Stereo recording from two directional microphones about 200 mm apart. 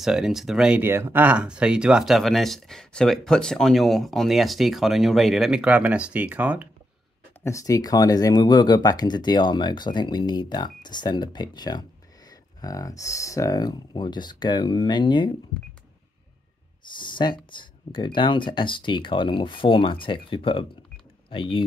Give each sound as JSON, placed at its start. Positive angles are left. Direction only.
{"t": 0.0, "sound": "speech", "side_deg": 0}
{"t": 7.4, "sound": "speech", "side_deg": 15}
{"t": 17.0, "sound": "speech", "side_deg": 25}